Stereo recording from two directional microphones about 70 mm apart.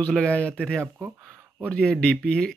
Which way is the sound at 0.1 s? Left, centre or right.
Centre.